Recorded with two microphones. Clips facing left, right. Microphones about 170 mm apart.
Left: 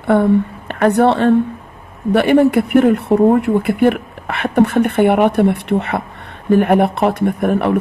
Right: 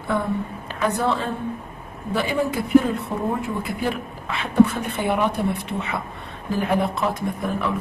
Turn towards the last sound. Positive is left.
turn(degrees=65)  # may be behind; listen again after turning